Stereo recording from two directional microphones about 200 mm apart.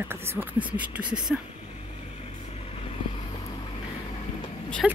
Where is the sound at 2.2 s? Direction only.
30° left (ahead or behind).